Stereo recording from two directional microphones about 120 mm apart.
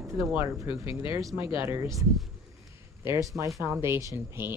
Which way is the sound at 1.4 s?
45° left (ahead or behind).